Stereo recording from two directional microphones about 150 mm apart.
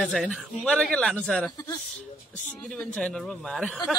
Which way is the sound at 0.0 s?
Centre (ahead or behind).